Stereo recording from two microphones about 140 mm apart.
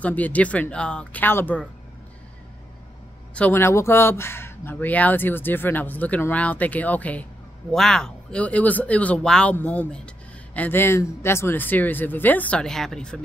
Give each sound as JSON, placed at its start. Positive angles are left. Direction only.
{"t": 0.0, "sound": "speech", "side_deg": 10}
{"t": 3.3, "sound": "speech", "side_deg": 15}